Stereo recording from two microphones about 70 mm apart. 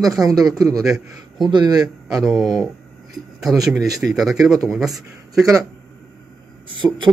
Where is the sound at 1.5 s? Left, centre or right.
Right.